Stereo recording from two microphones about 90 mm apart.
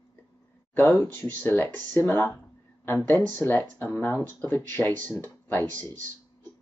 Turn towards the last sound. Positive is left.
turn(degrees=20)  # may be behind; listen again after turning